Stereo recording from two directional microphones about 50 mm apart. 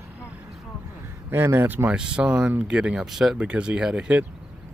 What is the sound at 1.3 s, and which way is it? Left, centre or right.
Speech, right.